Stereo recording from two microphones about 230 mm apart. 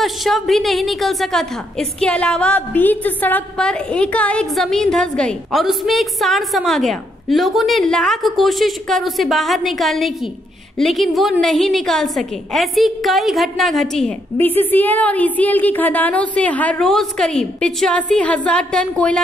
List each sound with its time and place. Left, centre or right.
0.0 s a woman's voice: centre